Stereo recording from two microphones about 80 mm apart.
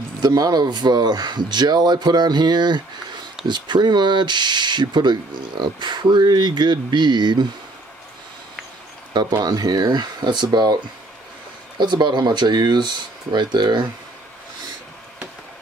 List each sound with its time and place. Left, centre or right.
0.2 s speech: right
9.4 s speech: right
11.8 s speech: right